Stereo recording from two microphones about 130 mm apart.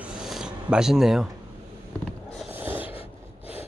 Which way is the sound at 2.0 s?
5° left (ahead or behind).